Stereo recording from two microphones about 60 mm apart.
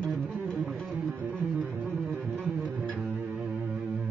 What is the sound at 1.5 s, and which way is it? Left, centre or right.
Music, right.